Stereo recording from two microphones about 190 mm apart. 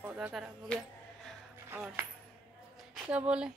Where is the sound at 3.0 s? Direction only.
5° right (ahead or behind).